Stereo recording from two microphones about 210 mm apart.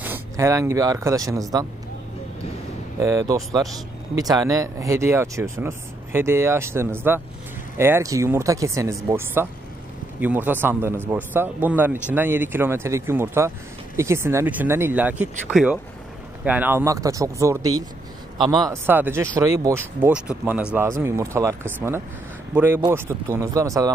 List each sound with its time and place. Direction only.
0.0 s speech: 10° right (ahead or behind)
3.0 s speech: 15° right (ahead or behind)